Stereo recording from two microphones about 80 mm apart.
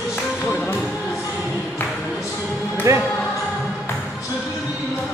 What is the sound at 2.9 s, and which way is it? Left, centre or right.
Speech, right.